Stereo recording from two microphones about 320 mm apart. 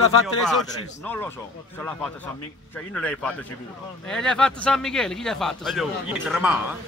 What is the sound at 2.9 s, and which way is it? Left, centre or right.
Speech, centre.